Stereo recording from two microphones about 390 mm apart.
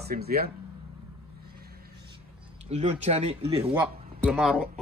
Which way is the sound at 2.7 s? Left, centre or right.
Centre.